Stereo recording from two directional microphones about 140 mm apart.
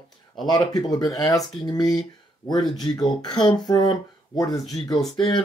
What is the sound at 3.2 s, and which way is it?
Speech, 35° left (ahead or behind).